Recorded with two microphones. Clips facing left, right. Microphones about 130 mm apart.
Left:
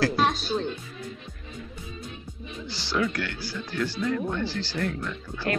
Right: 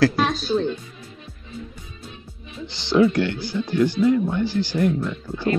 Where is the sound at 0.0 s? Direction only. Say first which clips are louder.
Right 4 dB; 90° right.